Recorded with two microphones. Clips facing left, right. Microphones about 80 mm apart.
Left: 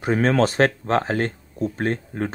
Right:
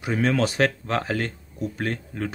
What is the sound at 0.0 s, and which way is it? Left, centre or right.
Speech, left.